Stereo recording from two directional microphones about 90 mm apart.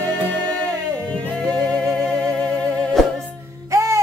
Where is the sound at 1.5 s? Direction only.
10° left (ahead or behind).